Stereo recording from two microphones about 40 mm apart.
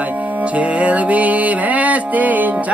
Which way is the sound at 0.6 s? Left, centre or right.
Right.